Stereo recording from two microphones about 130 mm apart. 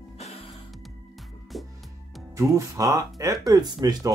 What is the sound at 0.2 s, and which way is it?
Music, 55° left (ahead or behind).